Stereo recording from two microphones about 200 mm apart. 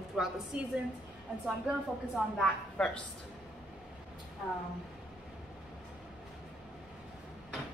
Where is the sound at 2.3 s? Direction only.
5° left (ahead or behind).